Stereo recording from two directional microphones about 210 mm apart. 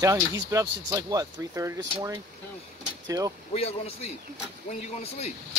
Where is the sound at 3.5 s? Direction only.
30° left (ahead or behind).